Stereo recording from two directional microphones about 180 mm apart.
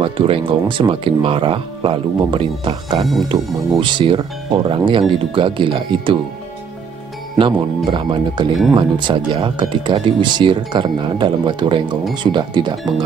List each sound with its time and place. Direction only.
0.0 s speech: 30° right (ahead or behind)
7.3 s speech: 25° right (ahead or behind)